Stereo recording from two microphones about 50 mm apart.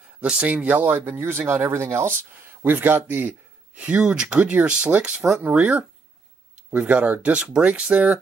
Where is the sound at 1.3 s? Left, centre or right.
Right.